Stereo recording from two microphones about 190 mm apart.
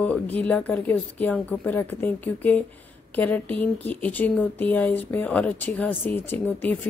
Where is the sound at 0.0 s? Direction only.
10° left (ahead or behind).